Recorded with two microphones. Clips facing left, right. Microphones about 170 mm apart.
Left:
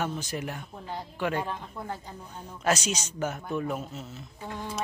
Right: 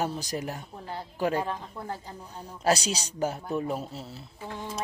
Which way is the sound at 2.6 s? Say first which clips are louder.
Right 2 dB; 35° right (ahead or behind).